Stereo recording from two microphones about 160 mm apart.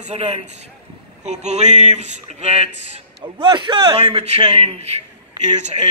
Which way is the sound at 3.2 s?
25° right (ahead or behind).